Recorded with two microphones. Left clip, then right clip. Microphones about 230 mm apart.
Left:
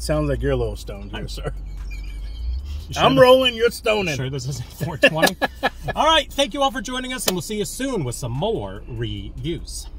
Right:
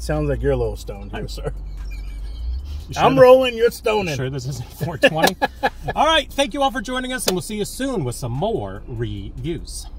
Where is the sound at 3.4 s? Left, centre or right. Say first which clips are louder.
Right 1 dB; centre.